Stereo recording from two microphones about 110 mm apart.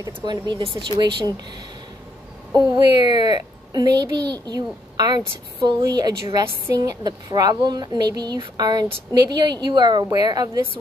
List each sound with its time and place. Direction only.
0.0 s a child's voice: 40° right (ahead or behind)
2.5 s a child's voice: 40° right (ahead or behind)